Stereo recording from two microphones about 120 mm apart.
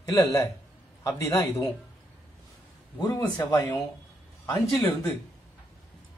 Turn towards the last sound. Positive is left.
turn(degrees=0)  # may be behind; listen again after turning